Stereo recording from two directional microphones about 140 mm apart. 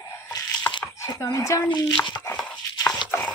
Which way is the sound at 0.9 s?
20° left (ahead or behind).